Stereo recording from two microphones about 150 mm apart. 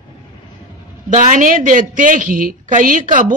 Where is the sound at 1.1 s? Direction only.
55° right (ahead or behind).